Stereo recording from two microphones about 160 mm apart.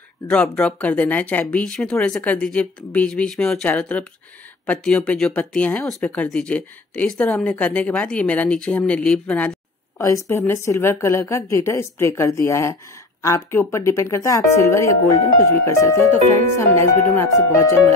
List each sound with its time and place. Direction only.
0.3 s speech: 10° left (ahead or behind)
9.9 s speech: 20° left (ahead or behind)